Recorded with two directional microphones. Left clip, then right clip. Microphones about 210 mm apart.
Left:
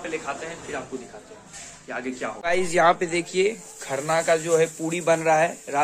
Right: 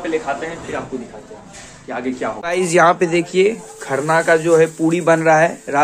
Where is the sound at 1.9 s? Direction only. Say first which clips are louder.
Right 8 dB; 5° right (ahead or behind).